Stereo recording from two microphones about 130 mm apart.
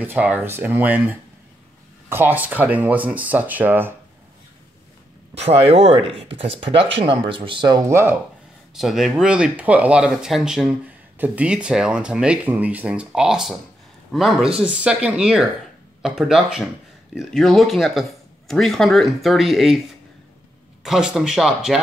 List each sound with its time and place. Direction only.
0.0 s speech: 10° right (ahead or behind)
5.3 s speech: 50° right (ahead or behind)
7.9 s speech: 20° right (ahead or behind)
8.7 s speech: centre (ahead or behind)
20.8 s speech: 5° right (ahead or behind)